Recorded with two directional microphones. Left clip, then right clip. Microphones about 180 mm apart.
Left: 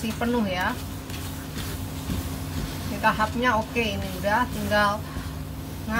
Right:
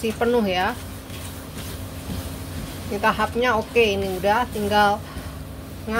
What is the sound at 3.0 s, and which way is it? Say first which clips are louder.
Speech: right 2 dB; 50° right (ahead or behind).